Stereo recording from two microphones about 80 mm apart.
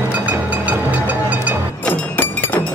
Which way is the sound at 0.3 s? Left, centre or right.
Right.